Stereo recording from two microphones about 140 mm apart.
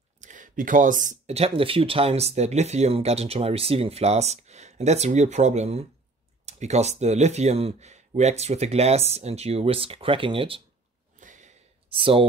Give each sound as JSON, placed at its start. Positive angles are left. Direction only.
{"t": 0.2, "sound": "speech", "side_deg": -65}
{"t": 11.1, "sound": "a sound", "side_deg": -65}
{"t": 11.9, "sound": "speech", "side_deg": -40}